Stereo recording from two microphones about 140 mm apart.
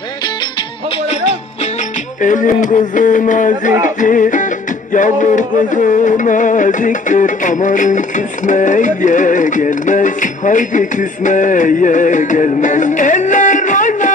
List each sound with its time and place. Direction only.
2.1 s music: 65° left (ahead or behind)